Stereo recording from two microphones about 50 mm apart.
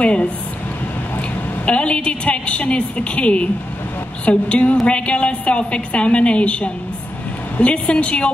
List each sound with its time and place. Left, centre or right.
0.0 s a woman's voice: left
1.7 s a woman's voice: left